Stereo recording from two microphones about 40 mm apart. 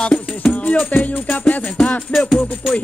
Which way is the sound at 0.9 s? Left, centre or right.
Left.